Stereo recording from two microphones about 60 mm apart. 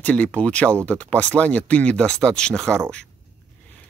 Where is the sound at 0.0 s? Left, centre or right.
Left.